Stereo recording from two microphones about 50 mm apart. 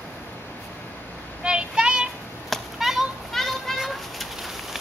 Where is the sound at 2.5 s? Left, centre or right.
Centre.